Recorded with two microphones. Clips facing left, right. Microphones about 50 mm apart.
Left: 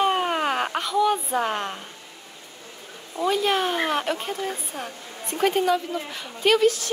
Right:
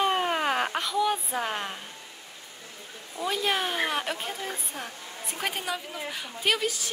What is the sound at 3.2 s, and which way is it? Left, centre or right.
Speech, centre.